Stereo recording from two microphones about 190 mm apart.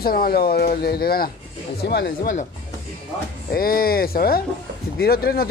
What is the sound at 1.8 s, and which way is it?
Speech, 65° left (ahead or behind).